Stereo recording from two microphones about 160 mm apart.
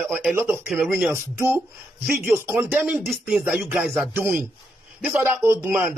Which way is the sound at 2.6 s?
10° right (ahead or behind).